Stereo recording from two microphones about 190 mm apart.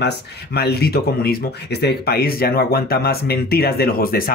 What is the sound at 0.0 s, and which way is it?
Speech, 60° left (ahead or behind).